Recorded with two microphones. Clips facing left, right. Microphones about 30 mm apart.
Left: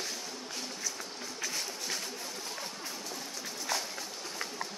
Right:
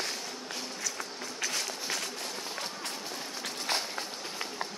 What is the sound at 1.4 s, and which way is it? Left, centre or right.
Walk, right.